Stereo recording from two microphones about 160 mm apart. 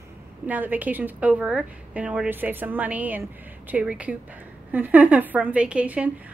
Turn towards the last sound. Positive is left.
turn(degrees=-10)  # may be behind; listen again after turning